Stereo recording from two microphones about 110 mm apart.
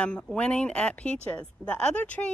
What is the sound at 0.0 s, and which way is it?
Speech, 10° left (ahead or behind).